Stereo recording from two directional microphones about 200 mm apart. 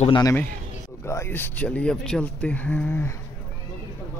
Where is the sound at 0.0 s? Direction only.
20° left (ahead or behind).